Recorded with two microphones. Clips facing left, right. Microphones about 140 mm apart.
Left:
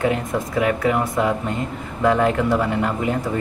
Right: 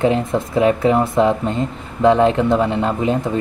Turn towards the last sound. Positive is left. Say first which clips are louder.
# right 3 dB
turn(degrees=-20)  # may be behind; listen again after turning